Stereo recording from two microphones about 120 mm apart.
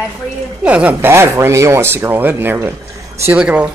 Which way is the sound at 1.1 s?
20° right (ahead or behind).